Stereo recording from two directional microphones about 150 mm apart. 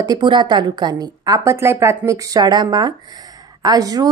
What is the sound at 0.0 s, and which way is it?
Speech, 30° right (ahead or behind).